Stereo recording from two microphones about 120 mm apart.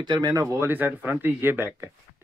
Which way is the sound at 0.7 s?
15° right (ahead or behind).